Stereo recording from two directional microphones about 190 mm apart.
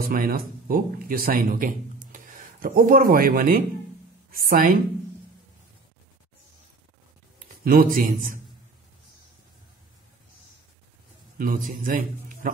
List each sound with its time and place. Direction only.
0.0 s a woman's voice: 50° right (ahead or behind)
7.3 s a man's voice: 50° right (ahead or behind)
11.3 s a man's voice: 45° right (ahead or behind)